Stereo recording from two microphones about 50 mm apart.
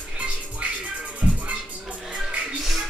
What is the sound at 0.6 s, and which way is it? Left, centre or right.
Music, right.